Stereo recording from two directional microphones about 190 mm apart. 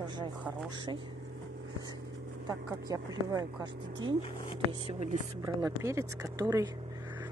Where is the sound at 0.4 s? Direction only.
5° right (ahead or behind).